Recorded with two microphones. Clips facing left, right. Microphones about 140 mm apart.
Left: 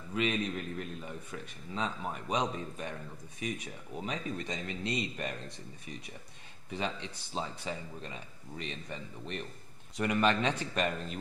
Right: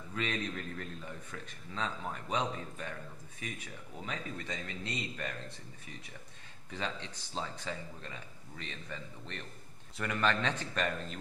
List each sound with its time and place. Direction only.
0.1 s a man's voice: 15° left (ahead or behind)
6.7 s a man's voice: 15° left (ahead or behind)